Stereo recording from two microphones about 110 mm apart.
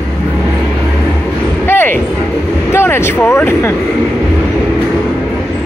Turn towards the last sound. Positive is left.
turn(degrees=25)  # may be behind; listen again after turning